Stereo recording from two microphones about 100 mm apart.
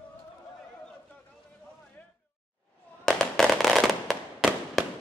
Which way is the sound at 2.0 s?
20° left (ahead or behind).